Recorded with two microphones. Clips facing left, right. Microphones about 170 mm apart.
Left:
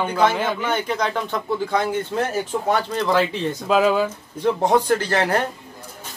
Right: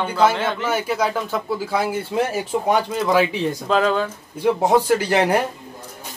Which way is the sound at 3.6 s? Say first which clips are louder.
Left 2 dB; 5° left (ahead or behind).